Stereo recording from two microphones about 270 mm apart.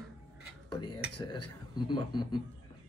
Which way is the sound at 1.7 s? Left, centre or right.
Centre.